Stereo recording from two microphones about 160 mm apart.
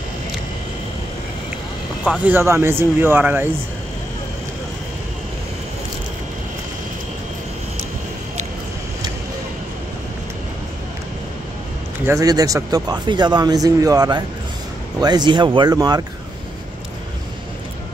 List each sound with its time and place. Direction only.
2.0 s speech: 10° right (ahead or behind)
12.1 s speech: 20° right (ahead or behind)